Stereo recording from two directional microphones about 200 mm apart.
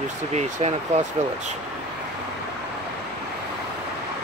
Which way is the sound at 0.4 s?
30° right (ahead or behind).